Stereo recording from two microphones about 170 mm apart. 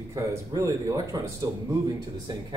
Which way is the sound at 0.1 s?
20° right (ahead or behind).